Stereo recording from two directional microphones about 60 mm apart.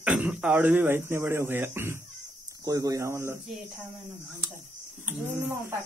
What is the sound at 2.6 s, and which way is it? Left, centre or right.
Speech, right.